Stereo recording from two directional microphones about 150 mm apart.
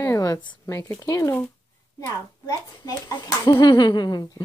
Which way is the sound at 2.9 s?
25° left (ahead or behind).